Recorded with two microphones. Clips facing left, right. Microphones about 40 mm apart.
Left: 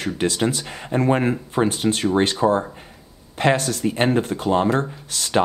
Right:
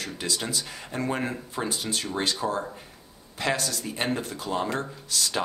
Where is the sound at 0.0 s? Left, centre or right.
Left.